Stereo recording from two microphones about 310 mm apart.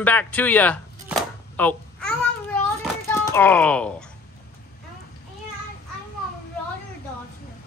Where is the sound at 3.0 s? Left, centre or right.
Centre.